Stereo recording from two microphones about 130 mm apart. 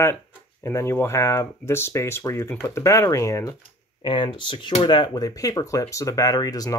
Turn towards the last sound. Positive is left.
turn(degrees=30)  # may be behind; listen again after turning